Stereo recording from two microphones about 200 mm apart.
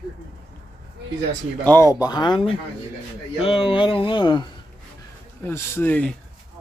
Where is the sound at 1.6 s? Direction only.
10° left (ahead or behind).